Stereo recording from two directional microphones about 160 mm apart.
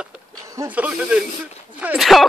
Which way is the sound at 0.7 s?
10° right (ahead or behind).